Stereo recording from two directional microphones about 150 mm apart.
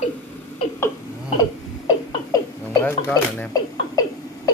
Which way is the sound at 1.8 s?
20° left (ahead or behind).